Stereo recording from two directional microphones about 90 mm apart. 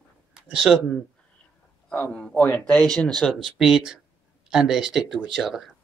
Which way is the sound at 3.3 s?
5° right (ahead or behind).